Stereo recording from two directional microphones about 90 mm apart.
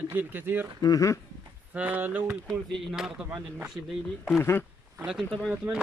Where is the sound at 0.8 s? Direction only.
40° left (ahead or behind).